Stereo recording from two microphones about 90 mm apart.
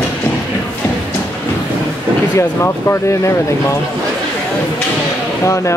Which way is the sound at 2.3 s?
30° left (ahead or behind).